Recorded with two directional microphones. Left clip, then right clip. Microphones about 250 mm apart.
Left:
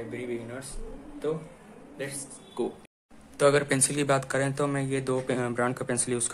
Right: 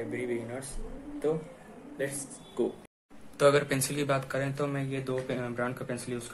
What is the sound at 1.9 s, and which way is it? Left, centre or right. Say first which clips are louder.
A man's voice: right 2 dB; centre.